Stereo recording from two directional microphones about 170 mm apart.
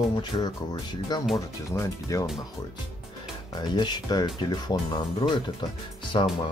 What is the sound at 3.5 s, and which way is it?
Speech, 25° left (ahead or behind).